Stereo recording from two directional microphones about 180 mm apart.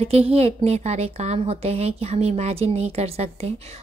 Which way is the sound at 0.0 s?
35° right (ahead or behind).